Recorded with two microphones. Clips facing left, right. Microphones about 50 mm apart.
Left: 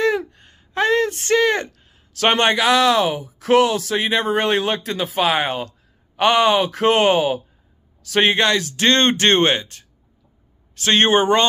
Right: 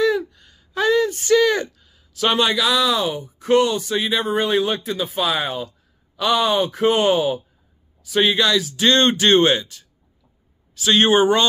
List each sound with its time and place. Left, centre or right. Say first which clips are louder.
0.0 s a sound: even; left
0.3 s a sound: left 2 dB; left
2.1 s speech: left 2 dB; left
8.0 s a man's voice: left 1 dB; left
8.8 s speech: even; left
11.1 s speech: even; left